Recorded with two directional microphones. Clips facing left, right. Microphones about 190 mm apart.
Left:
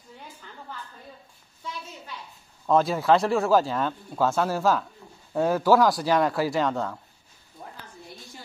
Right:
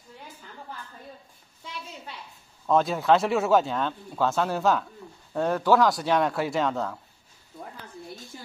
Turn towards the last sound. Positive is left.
turn(degrees=0)  # may be behind; listen again after turning